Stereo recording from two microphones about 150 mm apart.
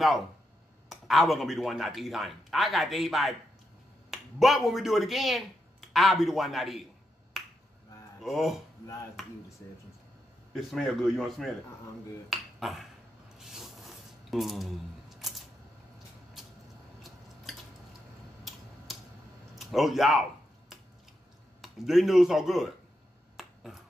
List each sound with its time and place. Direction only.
0.8 s speech: centre (ahead or behind)
7.3 s finger snapping: centre (ahead or behind)
8.2 s speech: centre (ahead or behind)
10.5 s speech: centre (ahead or behind)
12.3 s finger snapping: centre (ahead or behind)
13.4 s a sound: centre (ahead or behind)
18.9 s tick-tock: centre (ahead or behind)
19.5 s speech: centre (ahead or behind)
21.5 s speech: centre (ahead or behind)
23.3 s finger snapping: centre (ahead or behind)